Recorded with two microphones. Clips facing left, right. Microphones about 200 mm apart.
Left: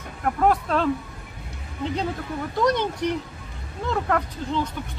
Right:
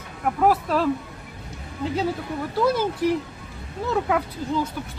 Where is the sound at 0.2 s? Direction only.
5° right (ahead or behind).